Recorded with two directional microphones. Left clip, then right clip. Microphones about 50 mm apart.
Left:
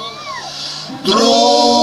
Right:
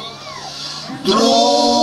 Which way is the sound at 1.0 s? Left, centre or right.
Left.